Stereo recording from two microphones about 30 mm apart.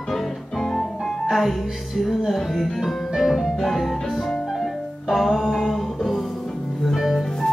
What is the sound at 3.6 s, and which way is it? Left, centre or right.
Music, centre.